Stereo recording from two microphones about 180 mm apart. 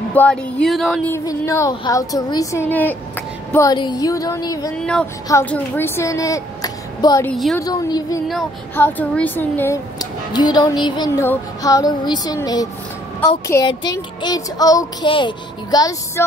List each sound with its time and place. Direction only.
0.1 s speech: 10° left (ahead or behind)
1.1 s a woman's voice: 15° left (ahead or behind)
3.5 s a child's voice: 20° left (ahead or behind)
4.7 s a woman's voice: 5° left (ahead or behind); by 7.2 s 20° left (ahead or behind)
7.2 s speech: centre (ahead or behind)
7.5 s a child's voice: 20° left (ahead or behind)